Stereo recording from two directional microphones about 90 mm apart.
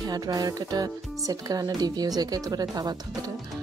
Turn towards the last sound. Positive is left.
turn(degrees=-45)  # may be behind; listen again after turning